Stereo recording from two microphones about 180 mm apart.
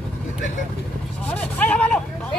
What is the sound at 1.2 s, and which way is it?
Vehicle, 10° left (ahead or behind).